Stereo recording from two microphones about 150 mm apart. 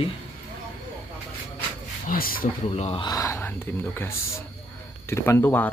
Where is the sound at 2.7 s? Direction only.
40° left (ahead or behind).